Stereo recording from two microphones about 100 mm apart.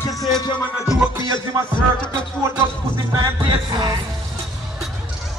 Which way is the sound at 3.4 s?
45° right (ahead or behind).